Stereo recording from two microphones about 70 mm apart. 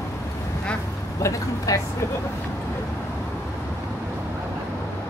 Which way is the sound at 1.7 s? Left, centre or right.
Left.